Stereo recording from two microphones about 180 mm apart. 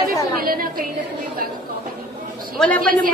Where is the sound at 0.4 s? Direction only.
55° right (ahead or behind).